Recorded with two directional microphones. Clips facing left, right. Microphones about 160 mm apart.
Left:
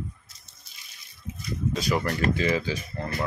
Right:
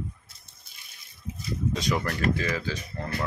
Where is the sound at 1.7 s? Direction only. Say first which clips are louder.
Left 1 dB; 5° left (ahead or behind).